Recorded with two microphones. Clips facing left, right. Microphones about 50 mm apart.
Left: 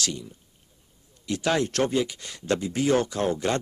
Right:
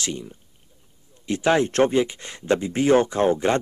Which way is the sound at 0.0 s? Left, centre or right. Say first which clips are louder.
Right 2 dB; right.